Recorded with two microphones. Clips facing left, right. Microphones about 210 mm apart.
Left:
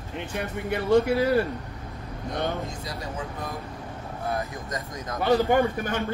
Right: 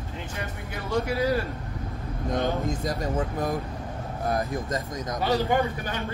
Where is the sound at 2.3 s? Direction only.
45° right (ahead or behind).